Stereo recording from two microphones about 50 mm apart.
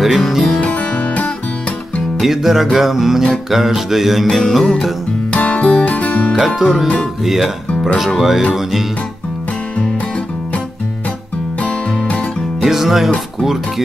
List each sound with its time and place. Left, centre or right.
0.0 s music: centre
0.7 s music: left
2.1 s music: centre
5.3 s music: left
6.3 s music: centre
7.2 s speech: centre
8.0 s music: centre
11.6 s music: left
12.6 s music: centre